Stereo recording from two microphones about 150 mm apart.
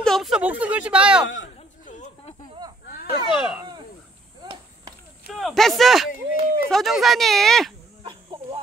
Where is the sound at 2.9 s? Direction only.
85° left.